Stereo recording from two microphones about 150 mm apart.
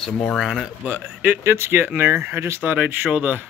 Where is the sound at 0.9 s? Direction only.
15° right (ahead or behind).